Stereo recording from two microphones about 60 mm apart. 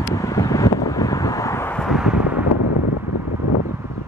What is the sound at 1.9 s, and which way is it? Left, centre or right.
Vehicle, centre.